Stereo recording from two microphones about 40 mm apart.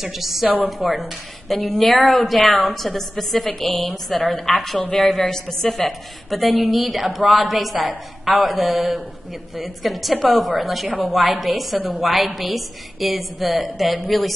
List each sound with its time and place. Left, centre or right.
0.0 s a woman's voice: centre
4.9 s a woman's voice: centre